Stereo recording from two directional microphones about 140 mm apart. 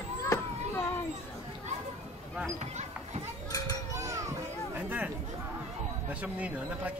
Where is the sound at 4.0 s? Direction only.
20° right (ahead or behind).